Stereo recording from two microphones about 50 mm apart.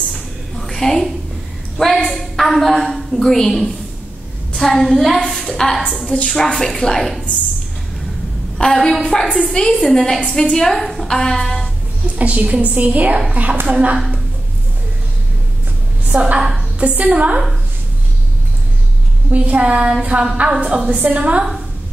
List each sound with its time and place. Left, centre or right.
0.1 s a sound: centre
2.0 s a woman's voice: centre
8.7 s a woman's voice: centre
9.4 s a woman's voice: centre
12.2 s a woman's voice: right
16.1 s a woman's voice: centre
19.3 s a woman's voice: right